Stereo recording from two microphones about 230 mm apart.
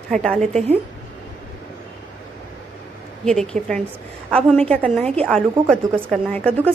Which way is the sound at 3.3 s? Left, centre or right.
Centre.